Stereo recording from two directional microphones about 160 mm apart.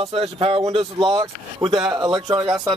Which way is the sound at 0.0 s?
40° right (ahead or behind).